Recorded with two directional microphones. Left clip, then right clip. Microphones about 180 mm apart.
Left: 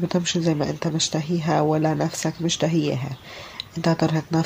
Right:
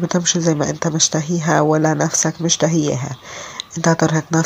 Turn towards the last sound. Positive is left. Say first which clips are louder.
# right 6 dB
turn(degrees=-20)  # may be behind; listen again after turning